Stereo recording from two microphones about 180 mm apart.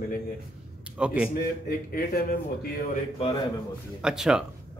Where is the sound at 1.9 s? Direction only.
55° left (ahead or behind).